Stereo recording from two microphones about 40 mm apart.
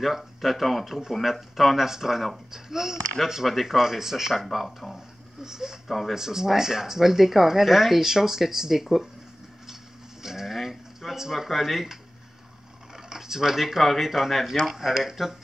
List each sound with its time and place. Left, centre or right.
0.0 s speech: centre
4.9 s a sound: centre
5.9 s speech: centre
6.1 s speech: centre
10.2 s a sound: centre
12.9 s speech: centre